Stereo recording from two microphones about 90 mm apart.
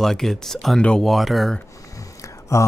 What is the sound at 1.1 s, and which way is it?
Speech, centre (ahead or behind).